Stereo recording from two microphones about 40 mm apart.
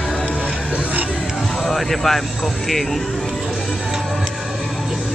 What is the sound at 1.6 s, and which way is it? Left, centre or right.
Vehicle, centre.